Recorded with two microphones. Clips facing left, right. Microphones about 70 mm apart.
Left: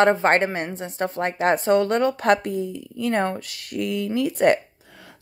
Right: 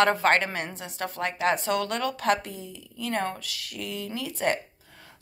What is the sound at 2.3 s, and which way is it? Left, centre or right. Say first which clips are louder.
Speech: left 6 dB; left.